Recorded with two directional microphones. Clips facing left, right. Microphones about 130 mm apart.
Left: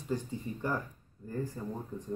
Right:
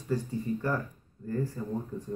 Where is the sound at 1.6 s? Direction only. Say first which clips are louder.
Right 2 dB; 20° left (ahead or behind).